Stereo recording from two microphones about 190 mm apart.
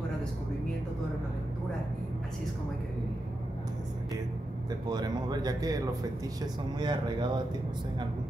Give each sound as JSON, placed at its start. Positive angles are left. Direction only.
{"t": 4.8, "sound": "speech", "side_deg": -20}